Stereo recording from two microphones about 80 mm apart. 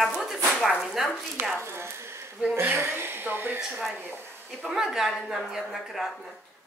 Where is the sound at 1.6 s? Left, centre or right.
Right.